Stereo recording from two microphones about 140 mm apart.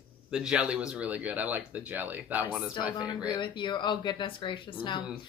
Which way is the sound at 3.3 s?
35° left (ahead or behind).